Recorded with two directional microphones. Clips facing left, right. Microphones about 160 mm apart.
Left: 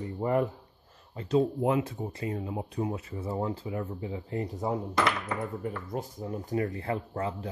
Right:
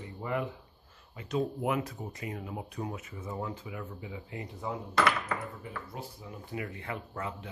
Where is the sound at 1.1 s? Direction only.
30° left (ahead or behind).